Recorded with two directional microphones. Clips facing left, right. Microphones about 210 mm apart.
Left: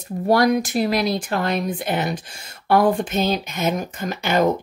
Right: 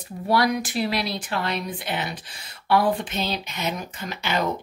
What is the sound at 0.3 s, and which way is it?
Speech, 45° left (ahead or behind).